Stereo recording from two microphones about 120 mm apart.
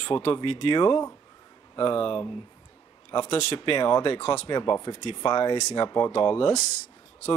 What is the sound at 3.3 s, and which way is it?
Speech, 55° left (ahead or behind).